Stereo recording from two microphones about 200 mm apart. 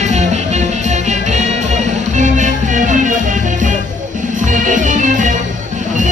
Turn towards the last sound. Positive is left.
turn(degrees=-40)  # may be behind; listen again after turning